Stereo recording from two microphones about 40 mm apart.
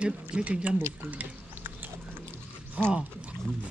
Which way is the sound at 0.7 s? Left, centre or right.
Right.